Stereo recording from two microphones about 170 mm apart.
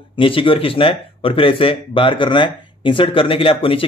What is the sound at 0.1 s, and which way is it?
Speech, 30° left (ahead or behind).